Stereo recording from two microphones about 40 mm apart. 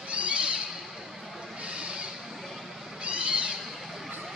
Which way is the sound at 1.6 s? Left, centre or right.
Right.